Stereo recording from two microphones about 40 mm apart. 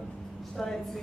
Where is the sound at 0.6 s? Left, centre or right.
Centre.